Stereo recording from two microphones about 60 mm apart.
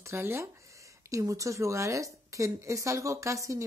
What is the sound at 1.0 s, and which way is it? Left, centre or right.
Speech, right.